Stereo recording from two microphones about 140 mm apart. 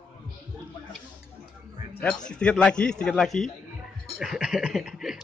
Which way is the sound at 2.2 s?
5° left (ahead or behind).